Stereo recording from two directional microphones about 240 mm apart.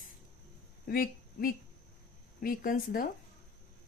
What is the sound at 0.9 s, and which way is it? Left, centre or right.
A woman's voice, left.